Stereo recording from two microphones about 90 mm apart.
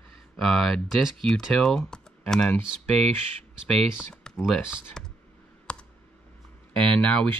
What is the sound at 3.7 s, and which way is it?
Speech, 5° left (ahead or behind).